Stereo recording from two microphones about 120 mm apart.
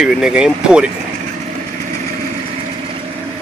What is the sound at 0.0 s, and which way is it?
Speech, 5° right (ahead or behind).